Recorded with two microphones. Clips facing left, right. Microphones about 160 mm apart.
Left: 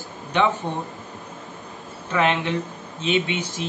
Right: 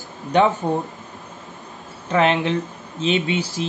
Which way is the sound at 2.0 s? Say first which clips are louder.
Right 4 dB; 35° right (ahead or behind).